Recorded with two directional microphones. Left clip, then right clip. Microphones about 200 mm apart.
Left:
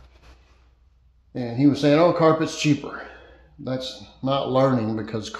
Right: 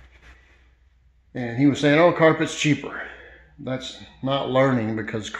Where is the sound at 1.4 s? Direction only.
5° right (ahead or behind).